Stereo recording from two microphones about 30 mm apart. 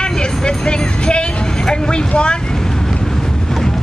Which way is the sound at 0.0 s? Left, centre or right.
Left.